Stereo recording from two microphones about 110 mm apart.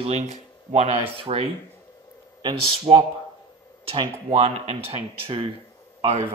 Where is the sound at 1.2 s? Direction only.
60° right (ahead or behind).